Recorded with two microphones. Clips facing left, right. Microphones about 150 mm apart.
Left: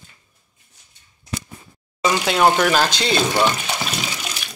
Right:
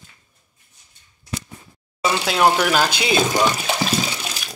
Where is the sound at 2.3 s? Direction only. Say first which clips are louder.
Left 1 dB; 5° right (ahead or behind).